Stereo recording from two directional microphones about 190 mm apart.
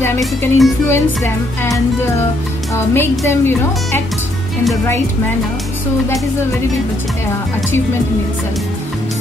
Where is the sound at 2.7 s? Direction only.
10° left (ahead or behind).